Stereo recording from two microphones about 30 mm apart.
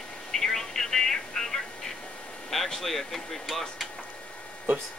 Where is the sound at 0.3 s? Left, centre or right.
Centre.